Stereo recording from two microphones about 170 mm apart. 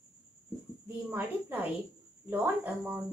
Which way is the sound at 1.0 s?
10° right (ahead or behind).